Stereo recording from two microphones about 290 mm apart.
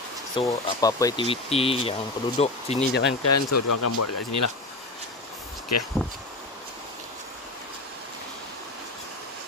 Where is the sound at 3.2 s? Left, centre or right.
Left.